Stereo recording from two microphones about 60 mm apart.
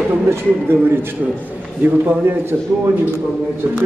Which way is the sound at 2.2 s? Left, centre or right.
Right.